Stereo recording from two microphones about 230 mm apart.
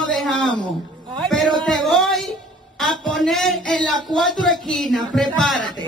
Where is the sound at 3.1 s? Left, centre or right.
Centre.